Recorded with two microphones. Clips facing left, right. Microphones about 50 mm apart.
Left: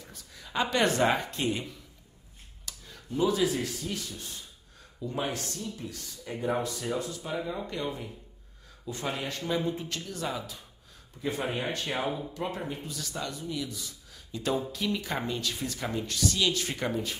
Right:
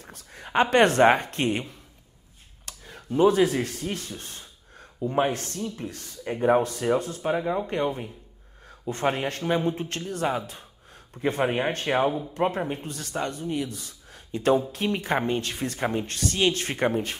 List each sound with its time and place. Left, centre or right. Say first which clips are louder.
0.0 s speech: right 5 dB; right